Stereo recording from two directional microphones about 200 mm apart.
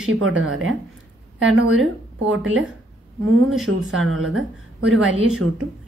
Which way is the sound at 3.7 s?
90° right.